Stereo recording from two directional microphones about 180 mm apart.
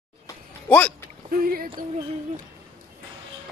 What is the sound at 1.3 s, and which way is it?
Speech, 55° right (ahead or behind).